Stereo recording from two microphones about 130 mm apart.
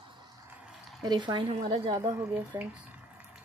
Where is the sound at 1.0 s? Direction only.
35° right (ahead or behind).